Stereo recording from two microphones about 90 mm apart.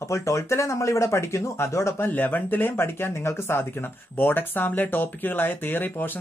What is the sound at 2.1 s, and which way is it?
Speech, 20° left (ahead or behind).